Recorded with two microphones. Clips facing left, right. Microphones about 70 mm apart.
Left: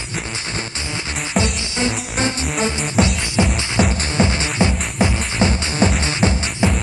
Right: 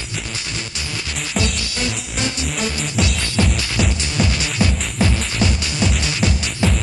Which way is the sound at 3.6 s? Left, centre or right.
Left.